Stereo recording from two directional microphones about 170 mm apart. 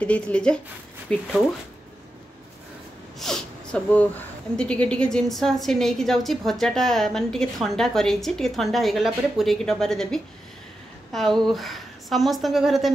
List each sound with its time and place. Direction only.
0.0 s speech: 5° left (ahead or behind)
3.2 s a sound: 5° left (ahead or behind)
4.6 s a woman's voice: 5° left (ahead or behind)